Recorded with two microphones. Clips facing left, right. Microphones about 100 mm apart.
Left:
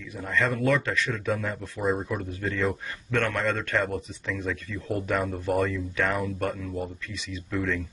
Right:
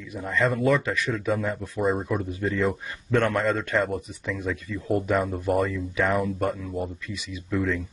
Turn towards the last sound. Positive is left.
turn(degrees=-5)  # may be behind; listen again after turning